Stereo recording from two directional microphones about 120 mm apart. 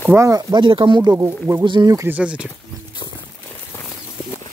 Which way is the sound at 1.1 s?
20° right (ahead or behind).